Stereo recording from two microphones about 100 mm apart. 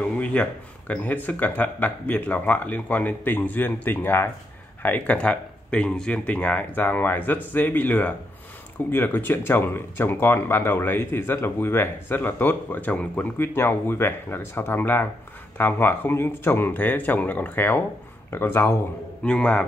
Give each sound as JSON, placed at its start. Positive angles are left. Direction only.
{"t": 0.0, "sound": "speech", "side_deg": 10}
{"t": 19.2, "sound": "speech", "side_deg": 10}